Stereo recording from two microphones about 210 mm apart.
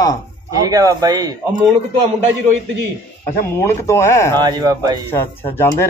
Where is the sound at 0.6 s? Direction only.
15° right (ahead or behind).